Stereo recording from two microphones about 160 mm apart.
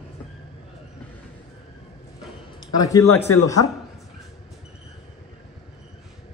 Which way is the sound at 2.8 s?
20° left (ahead or behind).